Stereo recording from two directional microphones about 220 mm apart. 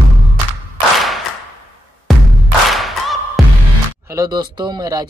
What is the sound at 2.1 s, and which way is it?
Music, centre (ahead or behind).